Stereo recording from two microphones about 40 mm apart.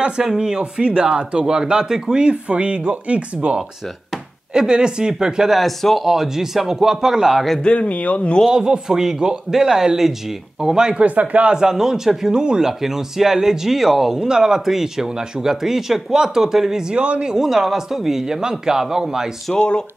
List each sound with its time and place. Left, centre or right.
0.2 s speech: centre
3.3 s speech: right
5.5 s speech: centre
6.0 s speech: centre
7.6 s speech: left
8.5 s speech: centre
11.0 s speech: right
11.5 s speech: centre
16.9 s speech: right
17.3 s speech: centre
19.5 s speech: centre